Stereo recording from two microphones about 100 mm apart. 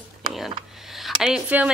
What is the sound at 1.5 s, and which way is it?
Speech, 15° right (ahead or behind).